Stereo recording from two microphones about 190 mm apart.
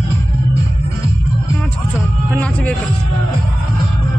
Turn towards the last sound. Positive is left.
turn(degrees=5)  # may be behind; listen again after turning